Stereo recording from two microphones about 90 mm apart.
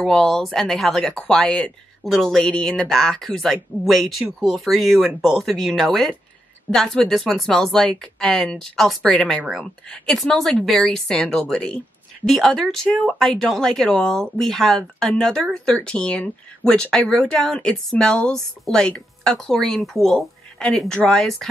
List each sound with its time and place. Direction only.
0.0 s speech: 5° left (ahead or behind)